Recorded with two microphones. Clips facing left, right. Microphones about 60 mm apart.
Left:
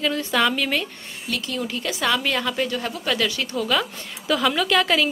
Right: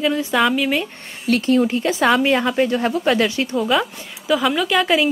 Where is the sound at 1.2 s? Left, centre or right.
Right.